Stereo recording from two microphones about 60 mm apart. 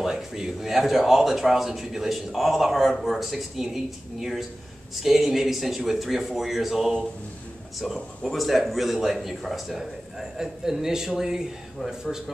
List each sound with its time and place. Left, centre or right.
0.0 s a man's voice: centre
8.2 s a man's voice: centre